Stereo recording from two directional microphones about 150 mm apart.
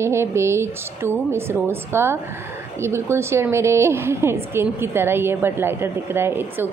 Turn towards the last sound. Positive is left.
turn(degrees=-15)  # may be behind; listen again after turning